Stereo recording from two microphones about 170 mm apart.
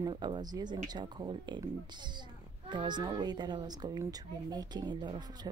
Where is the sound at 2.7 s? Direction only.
25° right (ahead or behind).